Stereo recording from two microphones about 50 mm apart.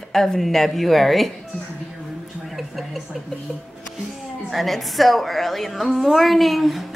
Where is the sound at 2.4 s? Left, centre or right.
Centre.